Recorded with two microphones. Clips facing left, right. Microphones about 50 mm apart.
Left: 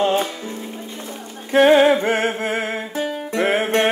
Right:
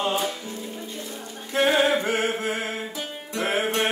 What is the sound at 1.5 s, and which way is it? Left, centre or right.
Music, left.